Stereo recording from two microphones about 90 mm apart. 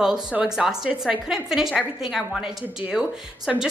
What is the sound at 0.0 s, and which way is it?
A woman's voice, 10° right (ahead or behind).